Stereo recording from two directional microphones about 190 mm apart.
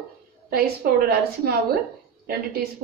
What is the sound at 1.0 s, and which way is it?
Speech, 55° right (ahead or behind).